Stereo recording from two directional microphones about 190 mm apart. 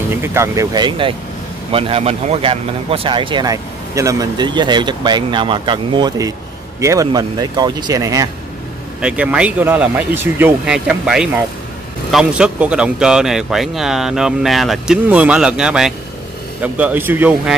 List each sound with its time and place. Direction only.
0.1 s speech: 15° right (ahead or behind)
9.0 s a man's voice: 5° right (ahead or behind)